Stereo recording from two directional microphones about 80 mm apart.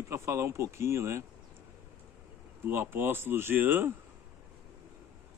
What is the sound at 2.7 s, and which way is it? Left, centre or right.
Speech, right.